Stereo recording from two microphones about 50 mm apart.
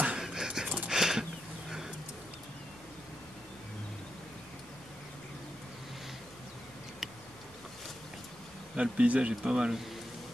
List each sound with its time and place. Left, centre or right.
0.0 s dog: centre
0.8 s horse: centre
8.7 s speech: right